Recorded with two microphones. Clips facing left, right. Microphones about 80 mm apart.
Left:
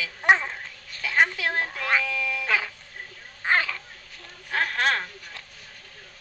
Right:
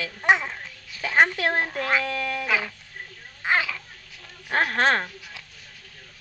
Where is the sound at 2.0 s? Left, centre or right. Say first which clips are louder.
Right 2 dB; right.